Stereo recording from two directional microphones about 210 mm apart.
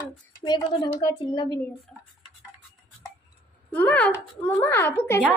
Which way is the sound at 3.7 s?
10° left (ahead or behind).